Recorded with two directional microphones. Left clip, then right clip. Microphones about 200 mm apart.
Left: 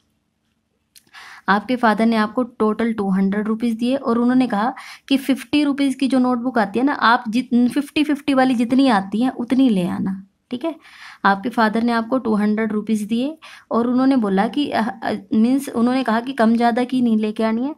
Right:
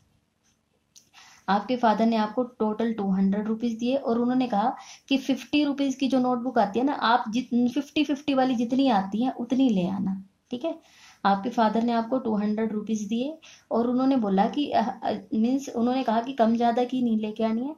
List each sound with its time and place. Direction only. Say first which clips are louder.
1.4 s speech: left 6 dB; 30° left (ahead or behind)